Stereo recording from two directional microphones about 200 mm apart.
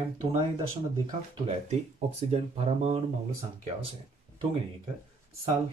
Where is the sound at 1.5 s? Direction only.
30° right (ahead or behind).